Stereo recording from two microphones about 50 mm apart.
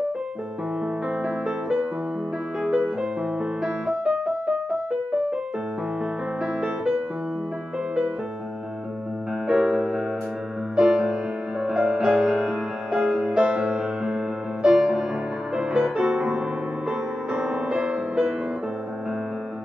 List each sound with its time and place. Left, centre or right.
1.2 s music: centre
6.4 s music: centre
9.5 s music: centre